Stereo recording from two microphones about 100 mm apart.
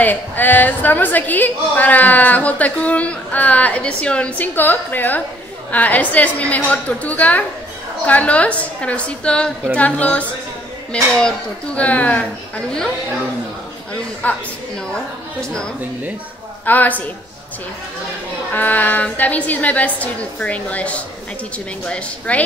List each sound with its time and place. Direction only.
0.0 s a woman's voice: 20° left (ahead or behind)
14.2 s a woman's voice: 15° left (ahead or behind)
16.6 s a woman's voice: 15° left (ahead or behind)
18.5 s a woman's voice: 15° left (ahead or behind)